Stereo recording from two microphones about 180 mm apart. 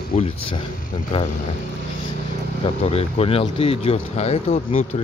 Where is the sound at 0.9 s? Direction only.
30° left (ahead or behind).